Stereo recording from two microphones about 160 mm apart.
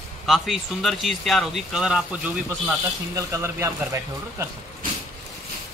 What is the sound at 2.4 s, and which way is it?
Speech, 15° right (ahead or behind).